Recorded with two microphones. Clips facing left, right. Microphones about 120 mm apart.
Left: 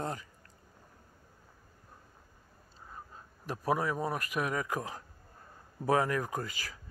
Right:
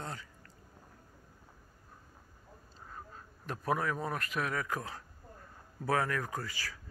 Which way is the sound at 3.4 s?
10° left (ahead or behind).